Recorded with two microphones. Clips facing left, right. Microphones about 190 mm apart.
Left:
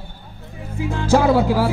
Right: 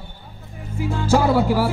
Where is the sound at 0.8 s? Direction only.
5° right (ahead or behind).